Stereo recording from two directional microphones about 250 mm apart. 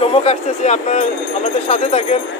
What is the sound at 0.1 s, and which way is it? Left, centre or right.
Speech, left.